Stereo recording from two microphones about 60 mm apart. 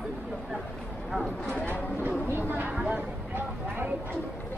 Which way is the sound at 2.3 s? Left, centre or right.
Right.